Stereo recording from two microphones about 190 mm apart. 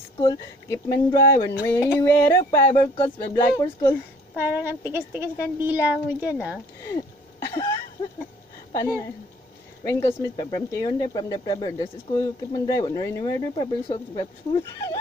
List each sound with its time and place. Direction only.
0.2 s speech: 15° left (ahead or behind)
4.5 s a woman's voice: 10° right (ahead or behind)
6.8 s throat clearing: 15° left (ahead or behind)
8.7 s speech: 15° left (ahead or behind)